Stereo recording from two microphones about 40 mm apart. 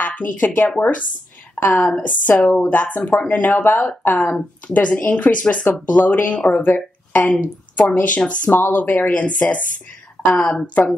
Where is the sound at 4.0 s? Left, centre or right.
Left.